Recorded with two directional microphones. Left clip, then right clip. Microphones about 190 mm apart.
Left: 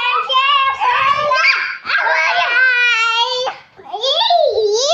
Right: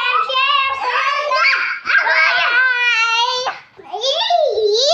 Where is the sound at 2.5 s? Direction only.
Centre (ahead or behind).